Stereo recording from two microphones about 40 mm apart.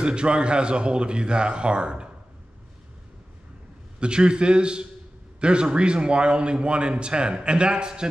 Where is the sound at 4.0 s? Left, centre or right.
Right.